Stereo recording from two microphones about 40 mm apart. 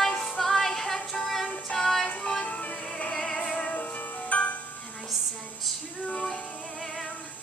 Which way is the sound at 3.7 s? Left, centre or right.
Left.